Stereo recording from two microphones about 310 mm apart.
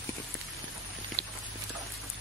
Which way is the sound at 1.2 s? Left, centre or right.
Right.